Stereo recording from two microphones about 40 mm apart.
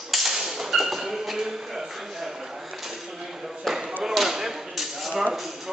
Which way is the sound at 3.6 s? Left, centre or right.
Centre.